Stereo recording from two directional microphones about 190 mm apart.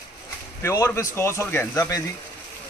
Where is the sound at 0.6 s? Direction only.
15° left (ahead or behind).